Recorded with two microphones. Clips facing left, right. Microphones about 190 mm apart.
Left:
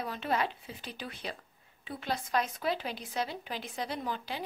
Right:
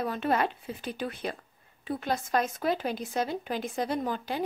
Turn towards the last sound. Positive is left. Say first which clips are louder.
# right 6 dB
turn(degrees=-50)  # may be behind; listen again after turning